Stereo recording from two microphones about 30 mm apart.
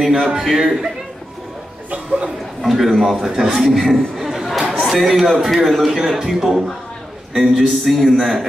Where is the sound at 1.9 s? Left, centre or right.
Right.